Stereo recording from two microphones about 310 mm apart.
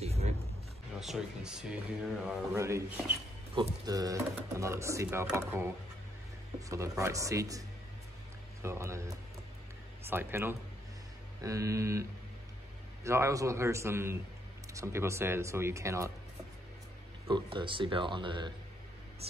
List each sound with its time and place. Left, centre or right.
0.0 s a sound: centre
0.9 s speech: centre
6.7 s speech: centre
8.6 s speech: centre
17.3 s speech: centre